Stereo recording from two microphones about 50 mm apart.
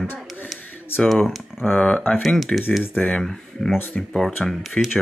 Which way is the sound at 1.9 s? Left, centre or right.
Left.